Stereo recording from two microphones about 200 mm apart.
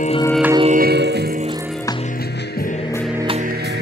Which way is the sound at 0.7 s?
50° right (ahead or behind).